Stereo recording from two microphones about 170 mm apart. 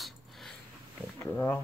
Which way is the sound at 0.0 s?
Centre (ahead or behind).